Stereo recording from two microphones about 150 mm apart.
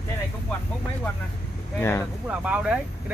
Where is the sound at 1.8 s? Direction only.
15° left (ahead or behind).